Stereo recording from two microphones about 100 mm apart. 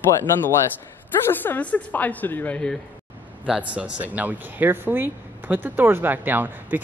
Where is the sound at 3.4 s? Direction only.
10° right (ahead or behind).